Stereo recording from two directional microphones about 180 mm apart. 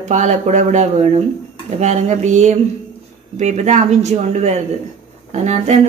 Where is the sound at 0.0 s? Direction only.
40° right (ahead or behind).